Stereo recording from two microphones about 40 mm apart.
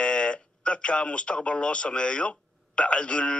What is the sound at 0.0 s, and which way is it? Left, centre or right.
Speech, left.